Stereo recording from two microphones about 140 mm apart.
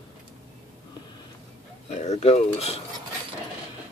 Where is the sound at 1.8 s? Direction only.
50° left (ahead or behind).